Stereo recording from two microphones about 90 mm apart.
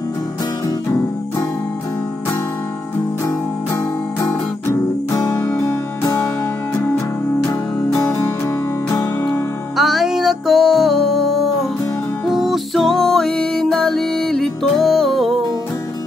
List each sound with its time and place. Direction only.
4.2 s music: 30° left (ahead or behind)
8.9 s music: 20° left (ahead or behind)
9.8 s music: centre (ahead or behind)